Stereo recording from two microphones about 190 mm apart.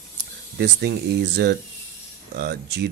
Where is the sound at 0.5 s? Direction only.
60° right (ahead or behind).